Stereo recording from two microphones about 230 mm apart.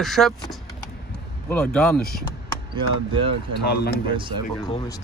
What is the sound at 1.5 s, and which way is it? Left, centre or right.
Speech, centre.